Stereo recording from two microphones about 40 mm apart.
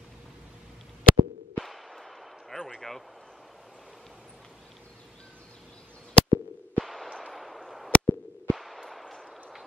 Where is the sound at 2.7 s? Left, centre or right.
Centre.